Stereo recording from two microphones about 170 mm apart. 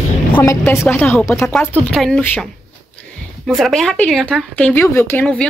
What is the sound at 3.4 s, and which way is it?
Speech, centre (ahead or behind).